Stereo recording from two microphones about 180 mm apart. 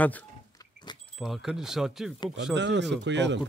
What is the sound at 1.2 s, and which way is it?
Speech, centre (ahead or behind).